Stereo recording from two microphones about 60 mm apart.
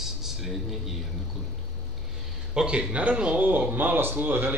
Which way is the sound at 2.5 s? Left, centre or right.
Centre.